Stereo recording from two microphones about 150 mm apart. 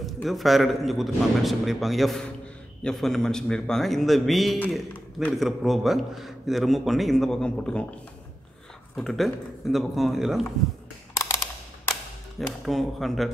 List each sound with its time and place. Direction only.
0.0 s a man's voice: centre (ahead or behind)
8.9 s a man's voice: centre (ahead or behind)
11.1 s a sound: 20° left (ahead or behind)
12.6 s a man's voice: centre (ahead or behind)